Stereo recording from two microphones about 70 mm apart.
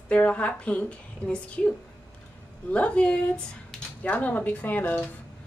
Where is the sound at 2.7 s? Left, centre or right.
Centre.